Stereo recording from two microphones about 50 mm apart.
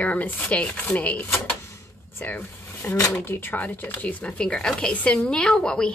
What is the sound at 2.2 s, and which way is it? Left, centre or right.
Speech, left.